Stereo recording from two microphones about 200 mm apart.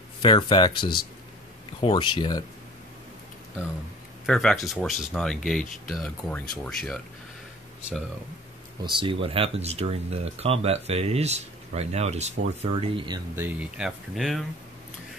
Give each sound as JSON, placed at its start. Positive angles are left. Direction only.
{"t": 0.2, "sound": "speech", "side_deg": 25}
{"t": 4.3, "sound": "speech", "side_deg": 0}
{"t": 8.8, "sound": "speech", "side_deg": -25}
{"t": 13.4, "sound": "speech", "side_deg": -5}